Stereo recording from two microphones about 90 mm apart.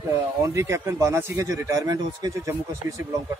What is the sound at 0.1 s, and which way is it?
Speech, 35° right (ahead or behind).